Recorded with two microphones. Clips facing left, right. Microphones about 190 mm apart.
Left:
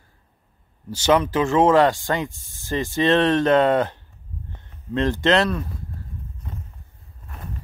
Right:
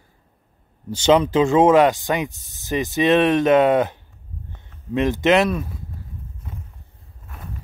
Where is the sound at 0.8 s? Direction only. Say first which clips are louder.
Right 3 dB; 20° right (ahead or behind).